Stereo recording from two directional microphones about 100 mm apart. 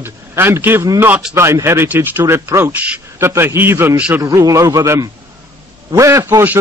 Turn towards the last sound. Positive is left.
turn(degrees=-30)  # may be behind; listen again after turning